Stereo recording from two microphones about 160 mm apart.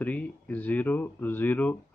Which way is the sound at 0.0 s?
10° left (ahead or behind).